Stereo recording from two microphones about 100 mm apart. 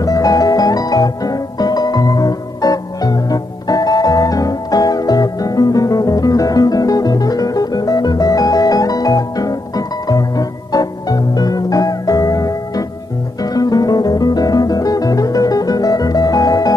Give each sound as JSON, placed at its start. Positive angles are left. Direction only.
{"t": 0.0, "sound": "music", "side_deg": 35}